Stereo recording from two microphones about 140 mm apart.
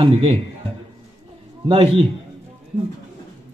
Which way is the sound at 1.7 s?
45° right (ahead or behind).